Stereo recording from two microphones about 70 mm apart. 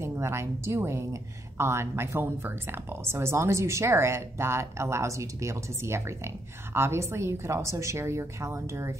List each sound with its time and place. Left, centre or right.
0.0 s a woman's voice: right